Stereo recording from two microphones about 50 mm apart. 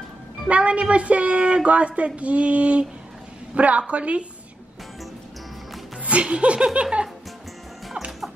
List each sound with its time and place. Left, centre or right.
0.5 s a woman's voice: right
6.0 s a woman's voice: right